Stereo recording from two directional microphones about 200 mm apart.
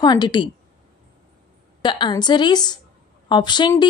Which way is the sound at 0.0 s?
20° left (ahead or behind).